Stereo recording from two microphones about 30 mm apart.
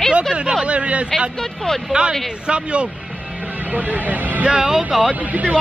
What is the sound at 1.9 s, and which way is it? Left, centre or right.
A man's voice, right.